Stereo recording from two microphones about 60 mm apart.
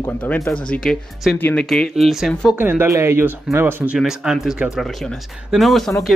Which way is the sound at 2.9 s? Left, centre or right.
Right.